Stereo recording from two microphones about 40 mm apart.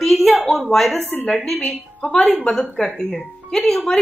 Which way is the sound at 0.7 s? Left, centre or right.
Centre.